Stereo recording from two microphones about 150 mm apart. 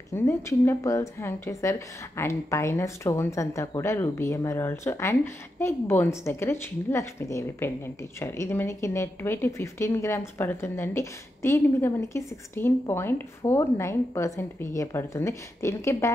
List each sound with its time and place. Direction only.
0.1 s speech: 15° left (ahead or behind)